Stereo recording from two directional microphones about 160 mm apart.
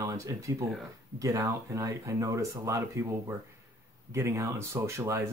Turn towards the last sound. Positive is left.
turn(degrees=-15)  # may be behind; listen again after turning